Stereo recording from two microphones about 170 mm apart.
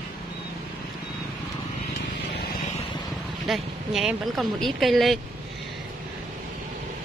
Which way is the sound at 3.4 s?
Centre (ahead or behind).